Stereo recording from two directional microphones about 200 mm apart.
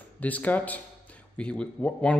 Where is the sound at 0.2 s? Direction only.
10° left (ahead or behind).